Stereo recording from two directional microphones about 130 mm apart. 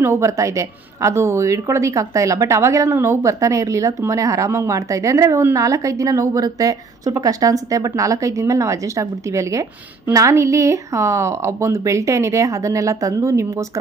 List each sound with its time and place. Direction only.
0.0 s a woman's voice: 20° right (ahead or behind)